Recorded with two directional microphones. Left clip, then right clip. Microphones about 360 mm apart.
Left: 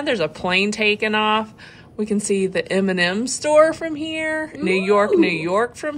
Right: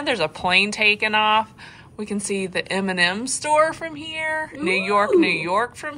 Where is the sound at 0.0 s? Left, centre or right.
Centre.